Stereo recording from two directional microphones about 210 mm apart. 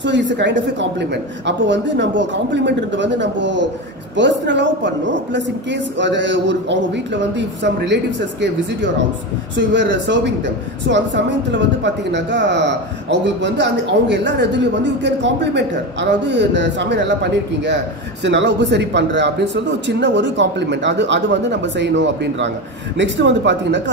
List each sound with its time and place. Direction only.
0.0 s speech: 60° right (ahead or behind)